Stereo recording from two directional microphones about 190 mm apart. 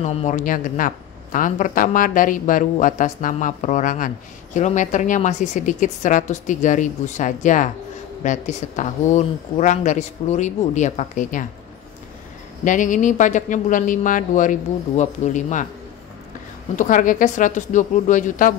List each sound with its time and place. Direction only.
0.0 s speech: 35° left (ahead or behind)
12.6 s speech: 40° left (ahead or behind)
16.7 s speech: 40° left (ahead or behind)